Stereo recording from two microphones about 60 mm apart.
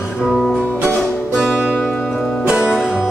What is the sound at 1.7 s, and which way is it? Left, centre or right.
Music, centre.